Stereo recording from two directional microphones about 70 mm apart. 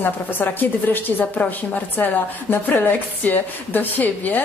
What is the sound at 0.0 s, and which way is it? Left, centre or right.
A woman's voice, left.